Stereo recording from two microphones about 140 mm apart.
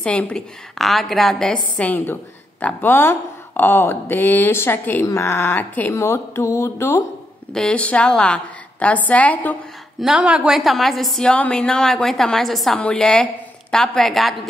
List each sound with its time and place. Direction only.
0.0 s a woman's voice: 10° left (ahead or behind)
7.5 s speech: 5° left (ahead or behind)
9.9 s a woman's voice: 5° right (ahead or behind)